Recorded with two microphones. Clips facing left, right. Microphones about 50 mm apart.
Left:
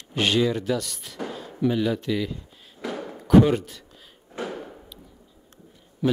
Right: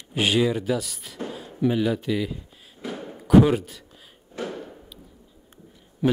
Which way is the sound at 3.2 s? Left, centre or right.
Centre.